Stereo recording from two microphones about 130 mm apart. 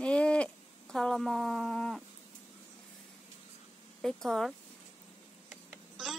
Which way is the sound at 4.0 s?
5° left (ahead or behind).